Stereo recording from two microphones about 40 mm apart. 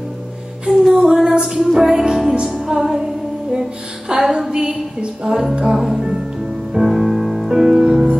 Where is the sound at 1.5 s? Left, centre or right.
Centre.